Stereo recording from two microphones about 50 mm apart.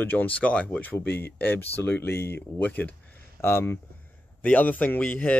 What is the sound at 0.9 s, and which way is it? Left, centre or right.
Speech, left.